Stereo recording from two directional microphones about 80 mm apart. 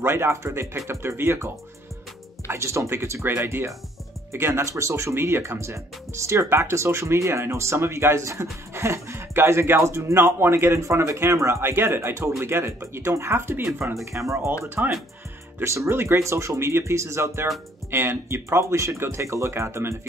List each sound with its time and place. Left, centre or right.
0.0 s speech: right
14.8 s speech: right
15.6 s speech: right